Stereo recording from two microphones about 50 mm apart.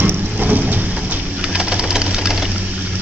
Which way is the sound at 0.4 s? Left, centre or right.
Right.